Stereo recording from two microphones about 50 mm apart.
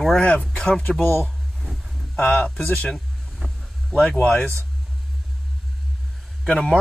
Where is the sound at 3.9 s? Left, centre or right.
Left.